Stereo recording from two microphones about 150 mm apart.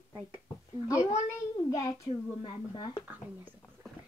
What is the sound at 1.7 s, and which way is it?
Speech, 20° left (ahead or behind).